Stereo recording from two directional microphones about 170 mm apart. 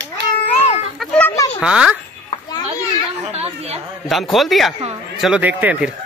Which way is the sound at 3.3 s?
35° right (ahead or behind).